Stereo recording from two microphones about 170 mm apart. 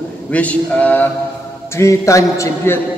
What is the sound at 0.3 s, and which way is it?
A man's voice, 10° left (ahead or behind).